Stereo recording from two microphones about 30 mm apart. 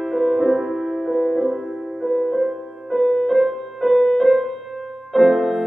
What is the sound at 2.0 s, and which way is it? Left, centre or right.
Music, right.